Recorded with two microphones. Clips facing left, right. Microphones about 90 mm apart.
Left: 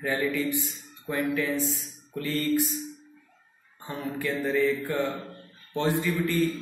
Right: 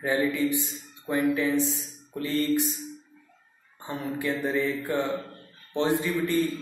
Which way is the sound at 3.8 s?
20° right (ahead or behind).